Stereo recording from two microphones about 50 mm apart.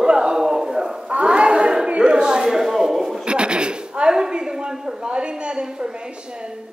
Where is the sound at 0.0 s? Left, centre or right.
Centre.